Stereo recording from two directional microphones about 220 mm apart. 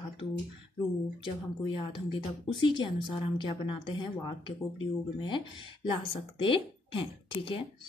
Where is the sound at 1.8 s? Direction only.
25° left (ahead or behind).